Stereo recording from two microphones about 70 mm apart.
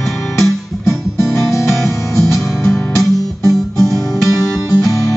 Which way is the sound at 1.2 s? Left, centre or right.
Centre.